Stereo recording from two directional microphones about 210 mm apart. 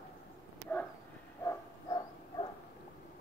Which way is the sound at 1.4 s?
20° left (ahead or behind).